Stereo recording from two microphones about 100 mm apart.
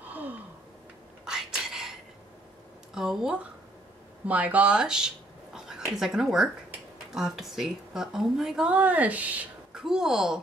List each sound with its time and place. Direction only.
0.0 s gasp: 15° right (ahead or behind)
1.2 s whispering: 5° right (ahead or behind)
2.9 s speech: 5° right (ahead or behind)